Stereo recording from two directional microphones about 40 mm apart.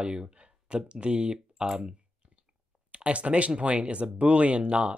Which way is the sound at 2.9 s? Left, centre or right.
Right.